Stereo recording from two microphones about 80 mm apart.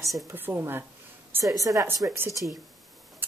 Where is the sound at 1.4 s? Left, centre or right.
Right.